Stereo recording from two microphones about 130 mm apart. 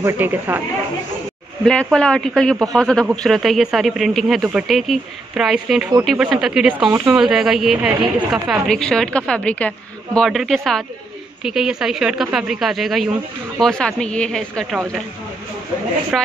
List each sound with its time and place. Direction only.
0.0 s speech: 20° right (ahead or behind)
1.6 s a woman's voice: 5° left (ahead or behind)